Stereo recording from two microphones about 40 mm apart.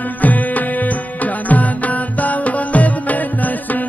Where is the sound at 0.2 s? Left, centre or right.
Left.